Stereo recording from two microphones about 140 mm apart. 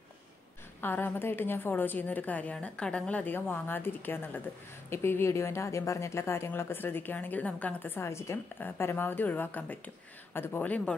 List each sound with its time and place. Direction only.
0.7 s speech: 15° left (ahead or behind)